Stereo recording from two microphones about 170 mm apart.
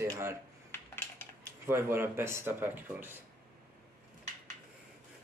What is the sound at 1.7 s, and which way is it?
Speech, 15° right (ahead or behind).